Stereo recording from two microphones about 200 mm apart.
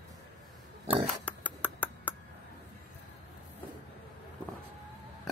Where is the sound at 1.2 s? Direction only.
5° left (ahead or behind).